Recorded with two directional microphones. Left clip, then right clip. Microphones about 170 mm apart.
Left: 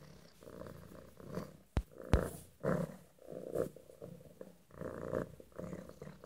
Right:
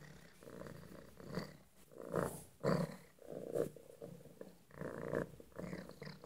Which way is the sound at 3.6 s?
25° left (ahead or behind).